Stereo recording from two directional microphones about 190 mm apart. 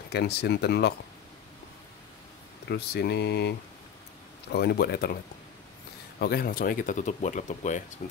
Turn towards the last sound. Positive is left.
turn(degrees=40)  # may be behind; listen again after turning